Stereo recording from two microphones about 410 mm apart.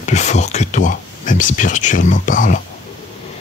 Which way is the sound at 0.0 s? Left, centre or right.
Centre.